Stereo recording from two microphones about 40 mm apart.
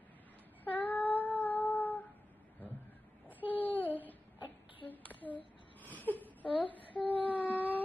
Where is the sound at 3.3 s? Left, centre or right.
Right.